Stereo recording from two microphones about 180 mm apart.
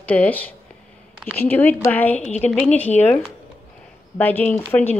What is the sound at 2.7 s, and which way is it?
Speech, 40° left (ahead or behind).